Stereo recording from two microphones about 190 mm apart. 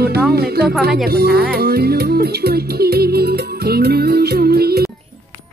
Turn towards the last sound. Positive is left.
turn(degrees=-55)  # may be behind; listen again after turning